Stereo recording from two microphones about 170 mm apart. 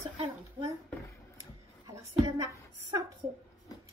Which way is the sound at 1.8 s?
20° right (ahead or behind).